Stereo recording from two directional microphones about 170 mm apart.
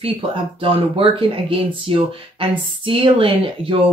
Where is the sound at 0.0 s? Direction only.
30° right (ahead or behind).